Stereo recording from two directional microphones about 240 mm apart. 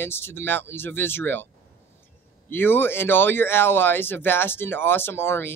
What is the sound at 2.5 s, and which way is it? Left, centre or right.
Speech, centre.